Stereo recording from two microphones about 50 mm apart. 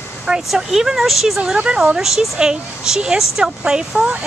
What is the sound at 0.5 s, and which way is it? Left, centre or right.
Speech, centre.